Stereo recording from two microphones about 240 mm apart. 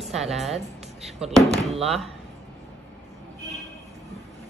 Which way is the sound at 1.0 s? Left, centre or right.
Right.